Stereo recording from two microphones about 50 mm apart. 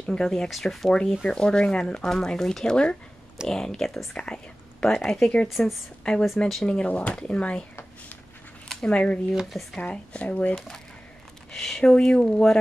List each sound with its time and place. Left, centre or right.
0.0 s speech: centre
0.5 s speech: centre
1.2 s speech: centre
4.2 s speech: centre
5.5 s speech: centre
6.0 s speech: centre
6.9 s speech: left
8.8 s speech: left
9.3 s speech: centre
9.8 s speech: left
11.5 s speech: centre
11.9 s speech: left